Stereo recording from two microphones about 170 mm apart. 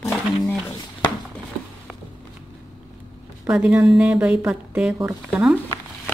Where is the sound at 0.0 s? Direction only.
Centre (ahead or behind).